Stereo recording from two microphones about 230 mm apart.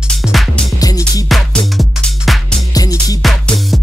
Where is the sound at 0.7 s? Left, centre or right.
Centre.